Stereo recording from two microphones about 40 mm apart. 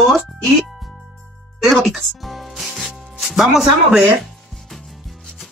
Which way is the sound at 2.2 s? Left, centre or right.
Centre.